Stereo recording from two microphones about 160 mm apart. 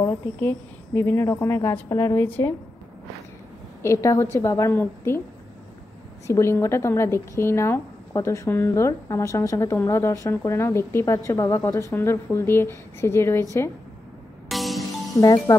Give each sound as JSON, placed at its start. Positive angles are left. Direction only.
{"t": 0.0, "sound": "a woman's voice", "side_deg": 15}
{"t": 3.8, "sound": "speech", "side_deg": 20}
{"t": 6.2, "sound": "speech", "side_deg": 15}
{"t": 14.5, "sound": "music", "side_deg": 0}